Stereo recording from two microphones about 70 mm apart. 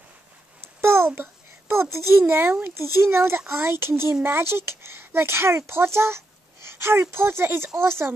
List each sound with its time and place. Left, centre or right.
0.6 s a child's voice: right